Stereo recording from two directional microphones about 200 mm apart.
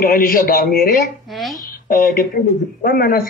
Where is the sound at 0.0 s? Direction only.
50° left (ahead or behind).